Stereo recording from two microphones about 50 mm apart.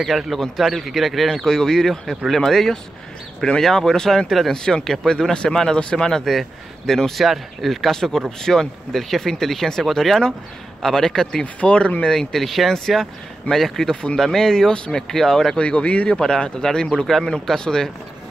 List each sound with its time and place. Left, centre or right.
0.0 s speech: centre
4.6 s speech: centre
11.6 s speech: left
12.1 s speech: centre